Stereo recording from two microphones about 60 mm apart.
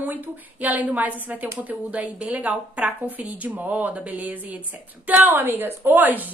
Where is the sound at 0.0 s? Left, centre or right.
Right.